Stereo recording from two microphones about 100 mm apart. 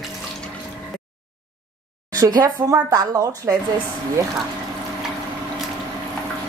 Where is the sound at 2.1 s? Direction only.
35° right (ahead or behind).